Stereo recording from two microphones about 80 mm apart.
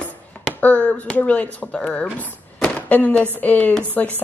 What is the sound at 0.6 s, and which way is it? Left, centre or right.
Speech, centre.